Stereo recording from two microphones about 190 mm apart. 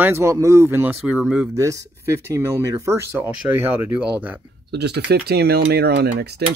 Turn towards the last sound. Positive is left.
turn(degrees=-60)  # may be behind; listen again after turning